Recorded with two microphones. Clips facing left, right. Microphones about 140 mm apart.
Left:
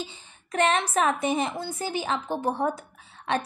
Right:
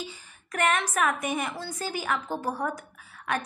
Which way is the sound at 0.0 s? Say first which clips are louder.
Left 2 dB; 25° left (ahead or behind).